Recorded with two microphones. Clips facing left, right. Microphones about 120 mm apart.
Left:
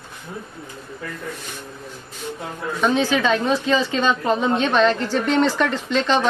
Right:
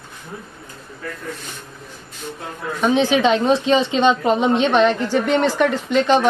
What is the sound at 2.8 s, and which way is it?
A woman's voice, 20° right (ahead or behind).